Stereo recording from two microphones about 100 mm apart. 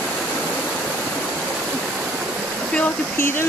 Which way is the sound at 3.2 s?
25° left (ahead or behind).